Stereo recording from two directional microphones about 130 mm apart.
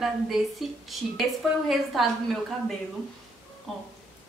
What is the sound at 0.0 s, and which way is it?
A woman's voice, centre (ahead or behind).